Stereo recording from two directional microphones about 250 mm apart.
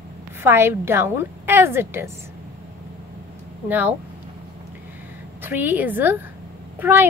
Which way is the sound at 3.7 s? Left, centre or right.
Centre.